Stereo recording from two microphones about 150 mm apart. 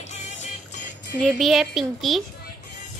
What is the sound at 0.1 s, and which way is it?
Music, 50° left (ahead or behind).